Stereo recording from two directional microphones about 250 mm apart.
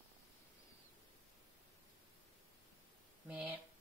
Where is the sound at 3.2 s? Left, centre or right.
Centre.